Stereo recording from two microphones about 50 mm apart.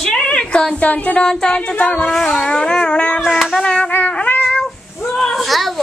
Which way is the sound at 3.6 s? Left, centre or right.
Centre.